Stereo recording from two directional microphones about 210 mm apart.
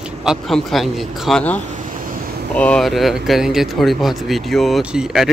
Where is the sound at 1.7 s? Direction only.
40° right (ahead or behind).